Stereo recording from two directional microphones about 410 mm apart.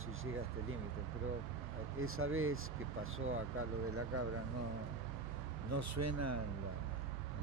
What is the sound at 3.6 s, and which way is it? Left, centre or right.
Speech, right.